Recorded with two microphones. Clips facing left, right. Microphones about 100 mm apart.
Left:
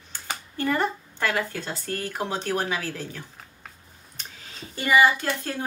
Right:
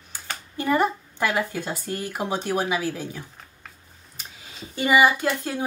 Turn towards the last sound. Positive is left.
turn(degrees=-15)  # may be behind; listen again after turning